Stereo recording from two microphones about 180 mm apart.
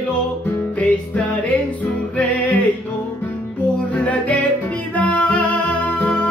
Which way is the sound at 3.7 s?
10° left (ahead or behind).